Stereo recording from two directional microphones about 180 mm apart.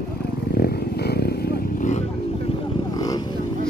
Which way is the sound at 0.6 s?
60° left (ahead or behind).